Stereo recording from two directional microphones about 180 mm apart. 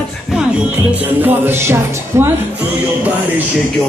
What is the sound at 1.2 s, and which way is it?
Speech, 10° right (ahead or behind).